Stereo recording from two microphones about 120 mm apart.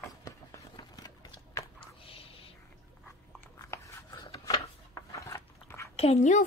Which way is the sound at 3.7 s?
30° left (ahead or behind).